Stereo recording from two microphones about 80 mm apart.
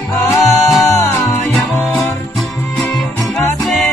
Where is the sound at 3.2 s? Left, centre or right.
Centre.